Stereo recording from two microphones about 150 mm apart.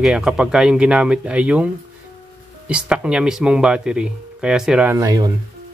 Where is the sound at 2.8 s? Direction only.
5° right (ahead or behind).